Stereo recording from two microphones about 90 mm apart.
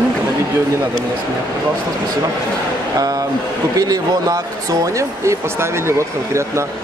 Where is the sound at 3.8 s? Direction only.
45° right (ahead or behind).